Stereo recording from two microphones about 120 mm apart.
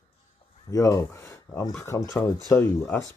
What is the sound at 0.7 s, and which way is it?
Speech, 30° left (ahead or behind).